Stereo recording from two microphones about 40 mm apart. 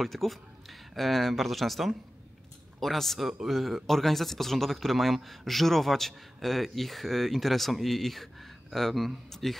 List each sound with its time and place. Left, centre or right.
0.0 s speech: centre